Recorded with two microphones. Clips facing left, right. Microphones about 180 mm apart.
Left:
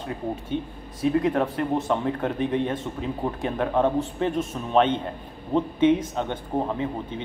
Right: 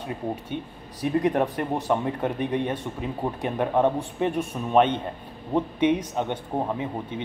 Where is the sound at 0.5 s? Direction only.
55° right (ahead or behind).